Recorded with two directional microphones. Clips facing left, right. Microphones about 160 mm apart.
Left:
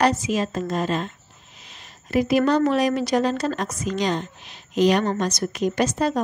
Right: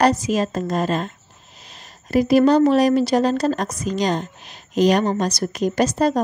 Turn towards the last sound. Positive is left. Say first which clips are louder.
# right 3 dB
turn(degrees=-40)  # may be behind; listen again after turning